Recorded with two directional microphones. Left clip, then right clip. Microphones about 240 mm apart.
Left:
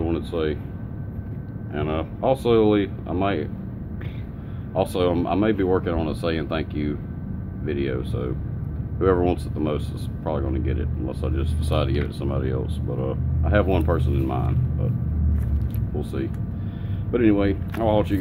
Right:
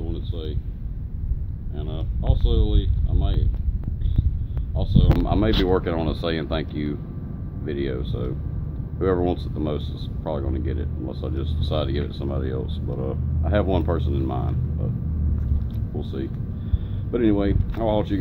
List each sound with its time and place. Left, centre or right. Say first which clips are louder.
0.0 s a sound: left 10 dB; left
1.8 s speech: left 11 dB; left
5.2 s speech: left 1 dB; centre
16.0 s speech: left 2 dB; centre